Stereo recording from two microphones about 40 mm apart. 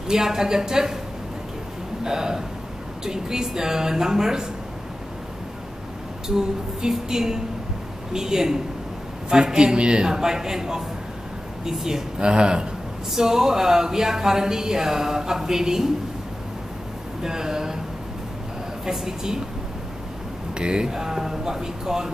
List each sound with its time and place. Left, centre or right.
0.1 s speech: centre
2.0 s speech: centre
6.2 s speech: centre
12.2 s speech: right
13.1 s speech: centre
17.2 s speech: centre
18.9 s speech: centre
20.5 s speech: right